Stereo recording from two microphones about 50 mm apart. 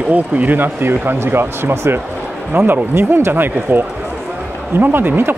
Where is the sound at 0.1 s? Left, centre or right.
Right.